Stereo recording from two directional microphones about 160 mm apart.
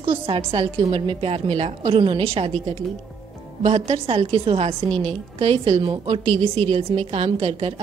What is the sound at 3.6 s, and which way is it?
A woman's voice, 40° right (ahead or behind).